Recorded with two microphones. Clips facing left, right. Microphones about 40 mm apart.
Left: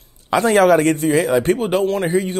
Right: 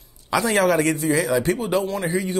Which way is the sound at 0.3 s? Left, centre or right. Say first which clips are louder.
Left 6 dB; left.